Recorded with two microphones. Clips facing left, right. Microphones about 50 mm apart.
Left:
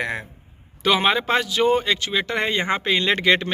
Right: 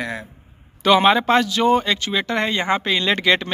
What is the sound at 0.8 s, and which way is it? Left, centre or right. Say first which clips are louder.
Speech: right 5 dB; centre.